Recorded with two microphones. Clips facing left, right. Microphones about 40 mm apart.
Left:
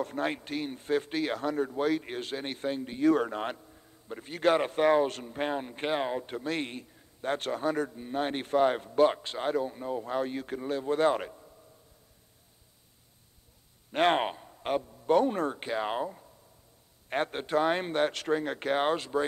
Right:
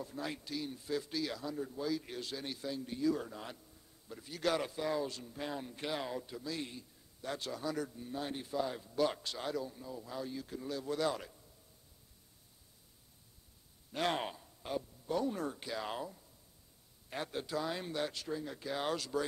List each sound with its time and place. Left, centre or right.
0.0 s speech: left
9.0 s speech: left
13.9 s speech: left
14.5 s a man's voice: left
18.9 s speech: left